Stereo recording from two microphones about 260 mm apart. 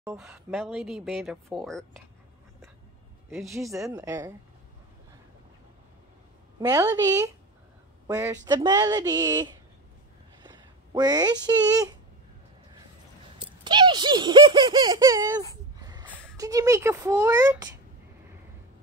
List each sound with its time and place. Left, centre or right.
0.0 s speech: centre
3.7 s speech: centre
6.6 s speech: centre
13.4 s speech: centre
15.8 s a sound: centre
16.3 s speech: centre